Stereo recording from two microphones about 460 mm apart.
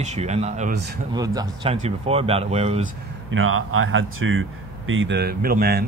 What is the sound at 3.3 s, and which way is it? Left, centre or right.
Speech, right.